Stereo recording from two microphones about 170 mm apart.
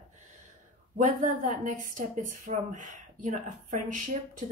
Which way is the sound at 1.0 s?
50° right (ahead or behind).